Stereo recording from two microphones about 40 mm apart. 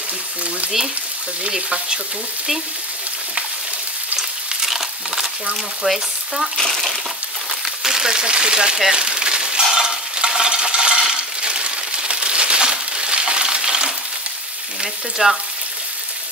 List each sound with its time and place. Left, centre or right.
4.6 s a sound: centre
5.9 s frying: centre
6.6 s speech: centre
7.9 s speech: centre
8.9 s a sound: right
9.7 s stir: centre
11.1 s crushing: right
15.2 s speech: centre